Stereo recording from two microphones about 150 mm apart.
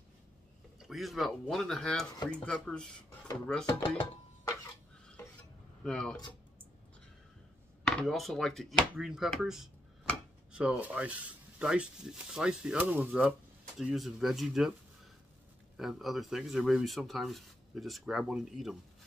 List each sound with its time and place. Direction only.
0.8 s speech: centre (ahead or behind)
3.6 s speech: 30° left (ahead or behind)
5.9 s speech: 5° left (ahead or behind)
7.8 s speech: 5° left (ahead or behind)
15.8 s speech: centre (ahead or behind)